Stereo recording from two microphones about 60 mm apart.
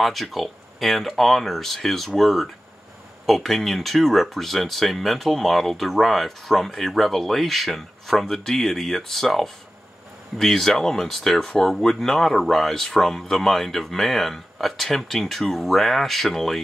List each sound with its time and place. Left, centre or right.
0.0 s speech: centre